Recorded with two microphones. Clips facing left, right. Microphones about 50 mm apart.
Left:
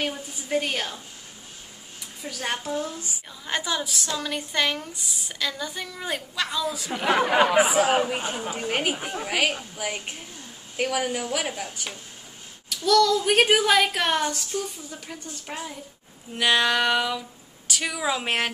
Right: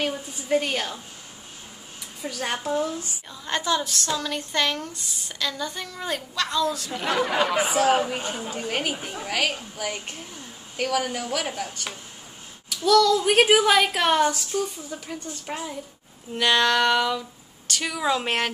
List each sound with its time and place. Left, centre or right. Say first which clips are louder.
0.0 s a woman's voice: right 2 dB; centre
2.2 s a woman's voice: right 1 dB; centre
2.6 s speech: right 4 dB; centre
3.0 s a woman's voice: right 1 dB; centre
6.9 s speech: left 3 dB; centre
7.4 s speech: left 1 dB; centre
12.6 s a woman's voice: right 1 dB; centre